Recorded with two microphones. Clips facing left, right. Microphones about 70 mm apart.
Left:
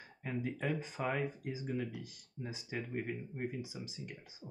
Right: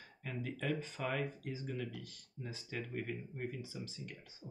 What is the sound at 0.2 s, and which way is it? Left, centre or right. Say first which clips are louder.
Speech: left 3 dB; centre.